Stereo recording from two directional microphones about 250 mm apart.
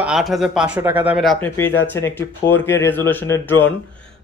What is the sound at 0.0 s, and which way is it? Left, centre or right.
A man's voice, centre.